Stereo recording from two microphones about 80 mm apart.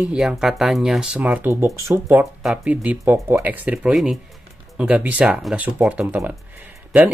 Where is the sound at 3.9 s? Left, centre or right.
Centre.